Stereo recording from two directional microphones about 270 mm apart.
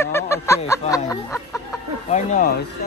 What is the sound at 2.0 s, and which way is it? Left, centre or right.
Speech, left.